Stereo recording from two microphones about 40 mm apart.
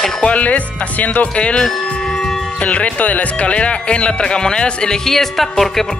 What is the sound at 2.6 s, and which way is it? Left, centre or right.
Speech, left.